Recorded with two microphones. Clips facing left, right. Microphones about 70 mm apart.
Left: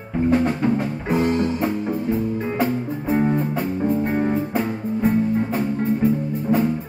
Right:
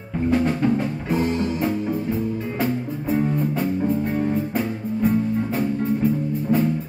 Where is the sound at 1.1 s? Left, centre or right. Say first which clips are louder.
Left 3 dB; left.